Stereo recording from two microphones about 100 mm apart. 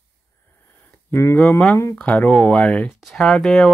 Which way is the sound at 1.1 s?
25° left (ahead or behind).